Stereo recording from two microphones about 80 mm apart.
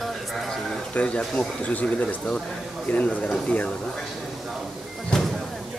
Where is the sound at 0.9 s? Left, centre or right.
Centre.